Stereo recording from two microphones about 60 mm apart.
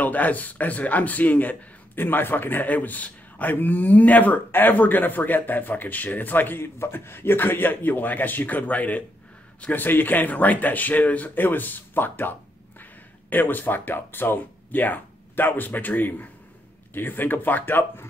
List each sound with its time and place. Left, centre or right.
0.0 s speech: left